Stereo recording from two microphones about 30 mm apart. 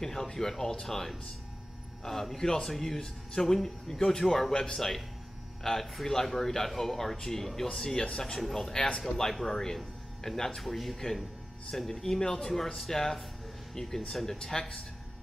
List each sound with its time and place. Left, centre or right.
0.0 s speech: centre
4.2 s speech: centre
4.5 s speech: centre
5.8 s speech: centre
8.4 s speech: centre
8.7 s speech: left
9.0 s speech: centre
10.6 s speech: centre